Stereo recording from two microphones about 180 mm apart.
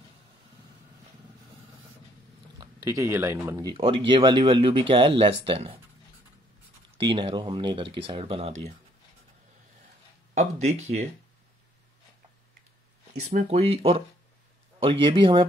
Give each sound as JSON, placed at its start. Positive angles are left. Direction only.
{"t": 2.6, "sound": "speech", "side_deg": -15}
{"t": 3.7, "sound": "speech", "side_deg": -30}
{"t": 7.0, "sound": "speech", "side_deg": -25}
{"t": 10.3, "sound": "speech", "side_deg": -40}
{"t": 13.2, "sound": "speech", "side_deg": -45}
{"t": 13.6, "sound": "speech", "side_deg": -35}